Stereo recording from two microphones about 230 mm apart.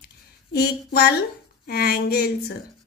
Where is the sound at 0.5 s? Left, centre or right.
Left.